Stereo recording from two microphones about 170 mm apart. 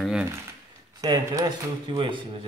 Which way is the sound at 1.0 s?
20° right (ahead or behind).